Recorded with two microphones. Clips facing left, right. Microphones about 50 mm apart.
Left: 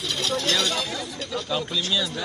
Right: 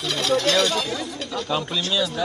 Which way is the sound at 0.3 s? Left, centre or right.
Right.